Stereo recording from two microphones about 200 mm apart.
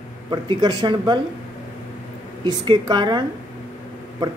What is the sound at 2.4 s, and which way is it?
Speech, 20° right (ahead or behind).